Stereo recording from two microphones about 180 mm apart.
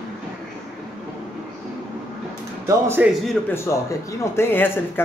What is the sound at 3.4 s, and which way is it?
Speech, 15° left (ahead or behind).